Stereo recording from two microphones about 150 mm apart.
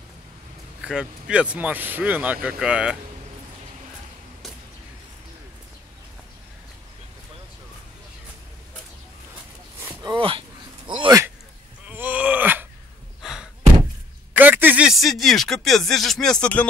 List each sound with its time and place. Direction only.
0.8 s speech: 5° right (ahead or behind)
10.0 s a sound: 35° right (ahead or behind)
11.1 s a sound: 20° right (ahead or behind)
11.9 s groan: 10° right (ahead or behind)
13.2 s knock: 5° right (ahead or behind)
14.3 s speech: 10° right (ahead or behind); by 16.6 s 5° left (ahead or behind)